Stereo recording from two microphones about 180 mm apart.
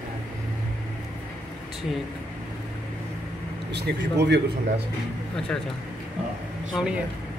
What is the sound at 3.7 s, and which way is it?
Speech, 70° right (ahead or behind).